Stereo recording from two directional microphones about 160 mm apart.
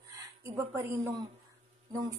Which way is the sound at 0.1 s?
20° right (ahead or behind).